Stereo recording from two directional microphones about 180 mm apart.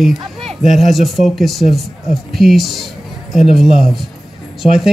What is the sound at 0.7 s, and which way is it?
Speech, centre (ahead or behind).